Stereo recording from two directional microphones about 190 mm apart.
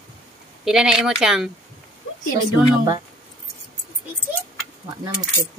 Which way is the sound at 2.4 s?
20° right (ahead or behind).